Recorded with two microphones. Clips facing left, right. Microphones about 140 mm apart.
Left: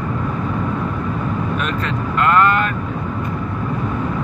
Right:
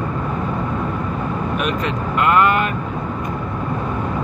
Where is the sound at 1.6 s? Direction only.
10° right (ahead or behind).